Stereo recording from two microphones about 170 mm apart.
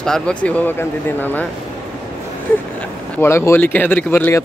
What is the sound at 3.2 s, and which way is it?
Speech, 15° left (ahead or behind).